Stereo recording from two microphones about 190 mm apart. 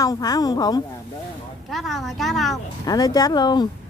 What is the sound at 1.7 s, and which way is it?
Speech, centre (ahead or behind).